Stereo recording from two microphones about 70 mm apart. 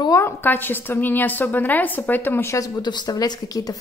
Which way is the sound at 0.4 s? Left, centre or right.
Left.